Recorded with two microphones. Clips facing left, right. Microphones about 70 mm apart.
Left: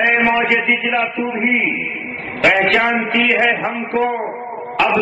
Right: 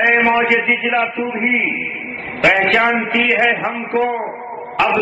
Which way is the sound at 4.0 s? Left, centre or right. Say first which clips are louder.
Even; centre.